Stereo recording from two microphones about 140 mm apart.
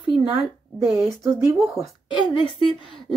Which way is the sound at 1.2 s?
20° right (ahead or behind).